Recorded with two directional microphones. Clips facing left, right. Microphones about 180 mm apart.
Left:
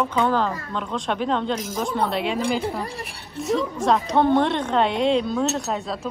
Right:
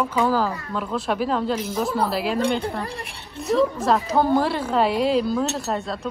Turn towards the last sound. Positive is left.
turn(degrees=0)  # may be behind; listen again after turning